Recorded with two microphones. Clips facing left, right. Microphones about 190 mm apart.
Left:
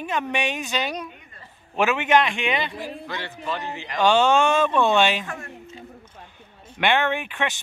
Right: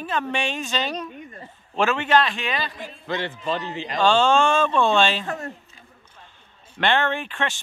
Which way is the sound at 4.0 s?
15° left (ahead or behind).